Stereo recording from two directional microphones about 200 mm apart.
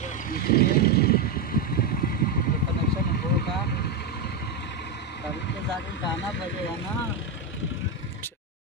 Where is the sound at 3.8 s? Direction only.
55° left (ahead or behind).